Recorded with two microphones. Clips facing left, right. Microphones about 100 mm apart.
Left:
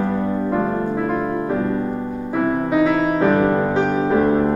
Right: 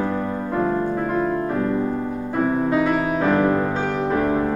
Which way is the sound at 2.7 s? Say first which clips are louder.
Left 3 dB; 15° left (ahead or behind).